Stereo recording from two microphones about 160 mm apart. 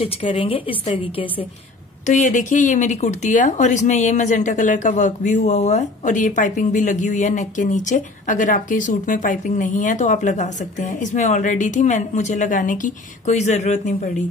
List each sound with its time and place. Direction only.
0.0 s a woman's voice: 35° left (ahead or behind)
2.0 s speech: 50° left (ahead or behind)